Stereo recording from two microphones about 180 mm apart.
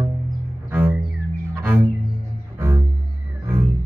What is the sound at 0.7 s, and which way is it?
Music, 10° right (ahead or behind).